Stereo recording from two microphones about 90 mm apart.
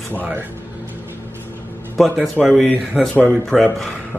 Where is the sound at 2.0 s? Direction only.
Centre (ahead or behind).